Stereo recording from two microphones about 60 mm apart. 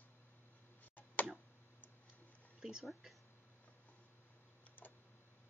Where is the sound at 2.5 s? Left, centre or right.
Centre.